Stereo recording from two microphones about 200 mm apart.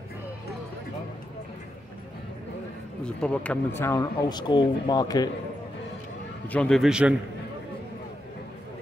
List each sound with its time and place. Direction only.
3.1 s speech: 5° left (ahead or behind)
6.4 s a man's voice: 5° left (ahead or behind)